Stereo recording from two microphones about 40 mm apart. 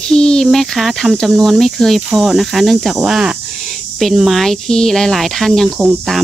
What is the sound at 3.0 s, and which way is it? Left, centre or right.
Speech, centre.